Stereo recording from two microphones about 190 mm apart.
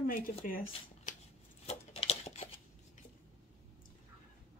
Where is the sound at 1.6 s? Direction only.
35° left (ahead or behind).